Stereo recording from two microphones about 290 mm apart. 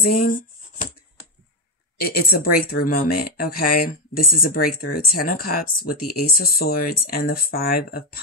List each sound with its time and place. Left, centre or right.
0.1 s speech: left
2.0 s speech: left